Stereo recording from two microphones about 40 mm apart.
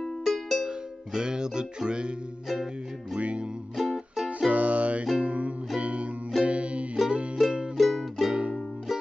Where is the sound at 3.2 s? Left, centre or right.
Right.